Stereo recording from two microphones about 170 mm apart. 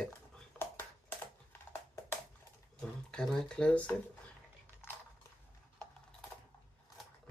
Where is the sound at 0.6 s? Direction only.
15° left (ahead or behind).